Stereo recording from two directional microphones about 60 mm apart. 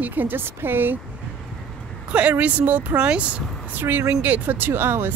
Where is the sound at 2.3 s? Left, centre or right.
Right.